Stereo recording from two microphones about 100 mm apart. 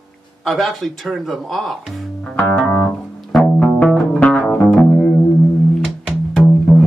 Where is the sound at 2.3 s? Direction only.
15° left (ahead or behind).